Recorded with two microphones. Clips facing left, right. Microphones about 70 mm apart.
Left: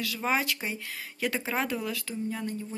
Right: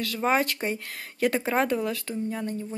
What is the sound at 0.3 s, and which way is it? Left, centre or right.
Speech, right.